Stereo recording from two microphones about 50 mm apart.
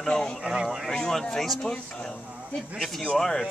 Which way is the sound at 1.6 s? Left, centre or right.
Centre.